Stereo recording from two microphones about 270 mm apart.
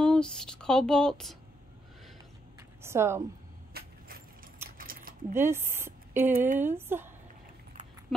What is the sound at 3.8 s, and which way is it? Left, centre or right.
Keys jangling, right.